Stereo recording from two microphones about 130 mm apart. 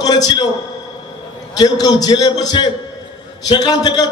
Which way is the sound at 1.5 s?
30° left (ahead or behind).